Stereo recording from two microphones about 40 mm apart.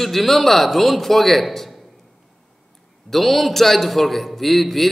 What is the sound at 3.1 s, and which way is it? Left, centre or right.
A man's voice, centre.